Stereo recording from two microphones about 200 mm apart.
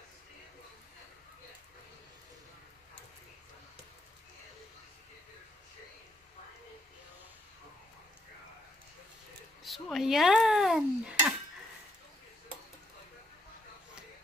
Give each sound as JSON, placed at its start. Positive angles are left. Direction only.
{"t": 9.6, "sound": "dishes", "side_deg": 0}